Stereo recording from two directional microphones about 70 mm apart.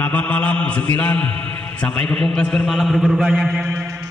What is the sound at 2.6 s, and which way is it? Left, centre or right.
Speech, centre.